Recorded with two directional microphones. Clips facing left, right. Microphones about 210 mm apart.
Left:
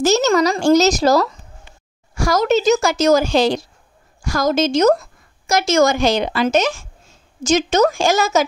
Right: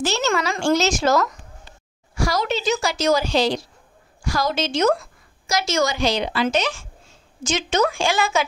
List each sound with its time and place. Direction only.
0.0 s a woman's voice: 40° left (ahead or behind)